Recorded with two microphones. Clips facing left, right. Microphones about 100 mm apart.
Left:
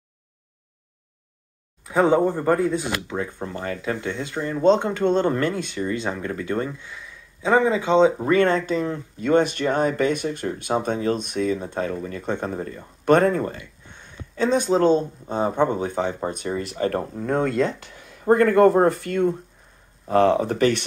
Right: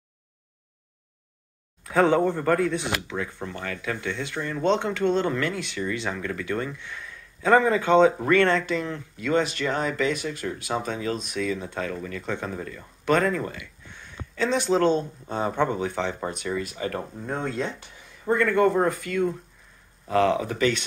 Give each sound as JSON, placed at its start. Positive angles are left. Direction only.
{"t": 1.9, "sound": "a man's voice", "side_deg": 15}
{"t": 3.1, "sound": "speech", "side_deg": 30}
{"t": 8.5, "sound": "speech", "side_deg": 35}
{"t": 13.9, "sound": "a sound", "side_deg": 30}
{"t": 15.0, "sound": "speech", "side_deg": 30}
{"t": 17.3, "sound": "speech", "side_deg": 60}
{"t": 20.5, "sound": "speech", "side_deg": 50}